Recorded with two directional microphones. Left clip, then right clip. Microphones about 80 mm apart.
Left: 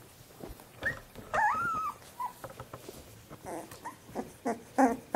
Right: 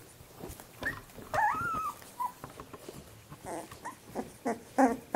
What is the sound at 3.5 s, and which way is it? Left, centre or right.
Dog, centre.